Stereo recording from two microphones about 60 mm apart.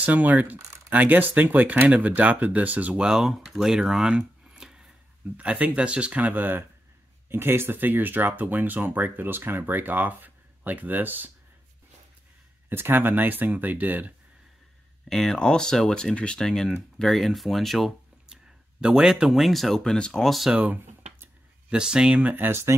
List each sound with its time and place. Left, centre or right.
0.0 s speech: right
3.0 s speech: centre; by 6.6 s right
7.2 s speech: right
12.6 s speech: right
15.0 s speech: centre
18.3 s speech: centre
20.5 s speech: right
21.6 s speech: centre
22.3 s speech: right